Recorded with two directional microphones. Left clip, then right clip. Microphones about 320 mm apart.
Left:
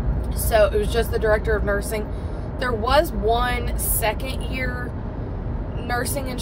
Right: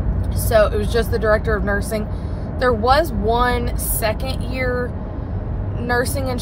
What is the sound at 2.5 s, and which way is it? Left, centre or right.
Speech, centre.